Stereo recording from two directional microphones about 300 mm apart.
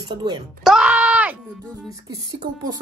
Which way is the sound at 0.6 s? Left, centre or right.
Centre.